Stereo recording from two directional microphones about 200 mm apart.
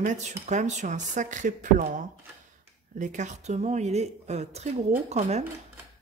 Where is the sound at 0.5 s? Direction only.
35° right (ahead or behind).